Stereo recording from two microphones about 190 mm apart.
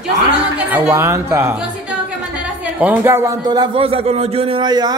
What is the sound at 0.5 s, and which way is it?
Speech, 10° right (ahead or behind).